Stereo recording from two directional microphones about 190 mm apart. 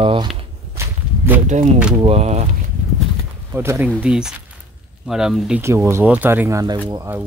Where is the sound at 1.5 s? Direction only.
40° right (ahead or behind).